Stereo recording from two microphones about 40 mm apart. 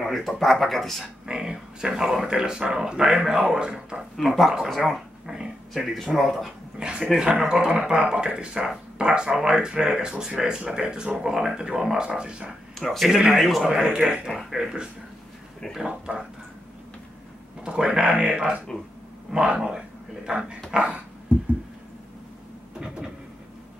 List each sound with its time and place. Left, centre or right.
0.0 s speech: centre
1.2 s speech: centre
4.6 s speech: centre
5.2 s dog: centre
5.9 s speech: centre
6.8 s a sound: right
7.2 s speech: centre
12.7 s speech: centre
13.1 s speech: centre
17.6 s speech: centre
18.0 s speech: right
18.3 s speech: right
20.3 s speech: right
22.8 s a sound: right